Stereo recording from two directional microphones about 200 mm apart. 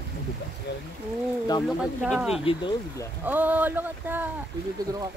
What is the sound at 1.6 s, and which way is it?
Speech, centre (ahead or behind).